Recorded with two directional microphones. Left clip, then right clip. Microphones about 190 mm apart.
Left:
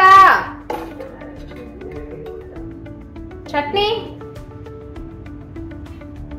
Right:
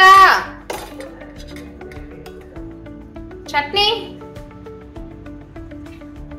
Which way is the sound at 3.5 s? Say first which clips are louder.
Right 2 dB; 20° right (ahead or behind).